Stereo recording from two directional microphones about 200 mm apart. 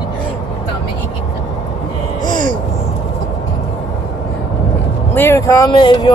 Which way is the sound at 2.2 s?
20° left (ahead or behind).